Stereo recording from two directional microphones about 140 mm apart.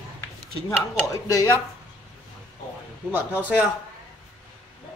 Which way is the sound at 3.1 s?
15° right (ahead or behind).